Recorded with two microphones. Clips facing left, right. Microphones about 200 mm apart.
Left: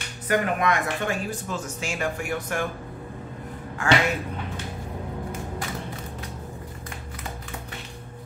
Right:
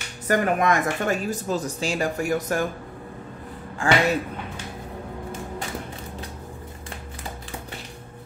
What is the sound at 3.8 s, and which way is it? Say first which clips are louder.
Speech: right 1 dB; 30° right (ahead or behind).